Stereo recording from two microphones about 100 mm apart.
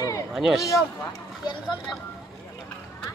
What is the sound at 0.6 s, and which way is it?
Speech, 30° left (ahead or behind).